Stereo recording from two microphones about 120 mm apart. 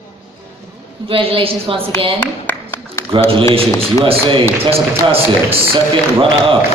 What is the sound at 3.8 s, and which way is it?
Speech, 50° right (ahead or behind).